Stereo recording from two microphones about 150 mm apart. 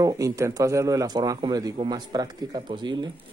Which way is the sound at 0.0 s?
20° right (ahead or behind).